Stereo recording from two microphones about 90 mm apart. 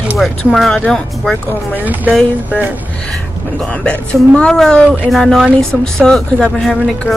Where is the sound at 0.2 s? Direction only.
Centre (ahead or behind).